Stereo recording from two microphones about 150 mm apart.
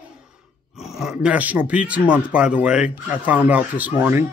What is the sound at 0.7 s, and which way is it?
Speech, centre (ahead or behind).